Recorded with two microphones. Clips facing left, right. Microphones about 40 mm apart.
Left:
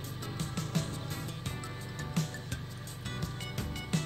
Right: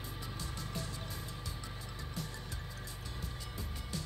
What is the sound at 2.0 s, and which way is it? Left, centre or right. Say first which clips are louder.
Music: left 9 dB; left.